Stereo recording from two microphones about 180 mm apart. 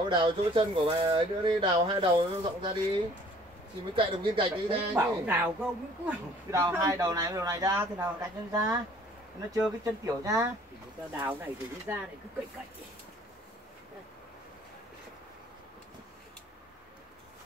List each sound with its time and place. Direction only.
0.1 s speech: 25° right (ahead or behind)
4.9 s speech: 10° right (ahead or behind)